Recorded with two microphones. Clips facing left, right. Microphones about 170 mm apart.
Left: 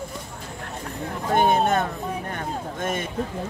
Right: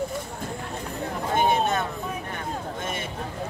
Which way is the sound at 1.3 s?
50° left (ahead or behind).